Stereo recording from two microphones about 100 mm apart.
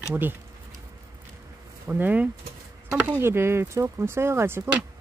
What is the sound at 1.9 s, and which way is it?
Speech, 15° right (ahead or behind).